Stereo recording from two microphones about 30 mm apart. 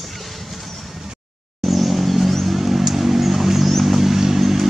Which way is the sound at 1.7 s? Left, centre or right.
Centre.